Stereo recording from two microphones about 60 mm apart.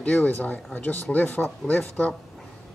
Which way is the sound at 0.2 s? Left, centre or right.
Left.